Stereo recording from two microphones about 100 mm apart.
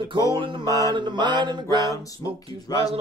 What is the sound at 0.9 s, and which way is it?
Music, 50° right (ahead or behind).